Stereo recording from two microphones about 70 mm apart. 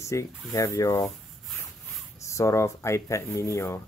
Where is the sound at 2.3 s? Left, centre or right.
Left.